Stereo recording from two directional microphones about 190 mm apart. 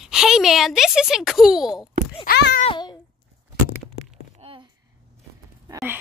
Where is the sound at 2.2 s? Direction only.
60° left (ahead or behind).